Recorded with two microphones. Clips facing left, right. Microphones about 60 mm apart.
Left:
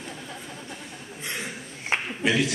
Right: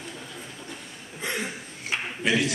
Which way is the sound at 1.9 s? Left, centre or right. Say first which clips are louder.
Left 3 dB; left.